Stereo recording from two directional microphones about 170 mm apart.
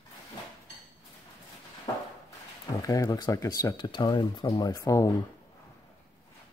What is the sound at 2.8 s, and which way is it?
Speech, 20° left (ahead or behind).